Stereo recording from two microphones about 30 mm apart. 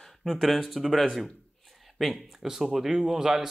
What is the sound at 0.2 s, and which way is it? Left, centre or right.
Speech, centre.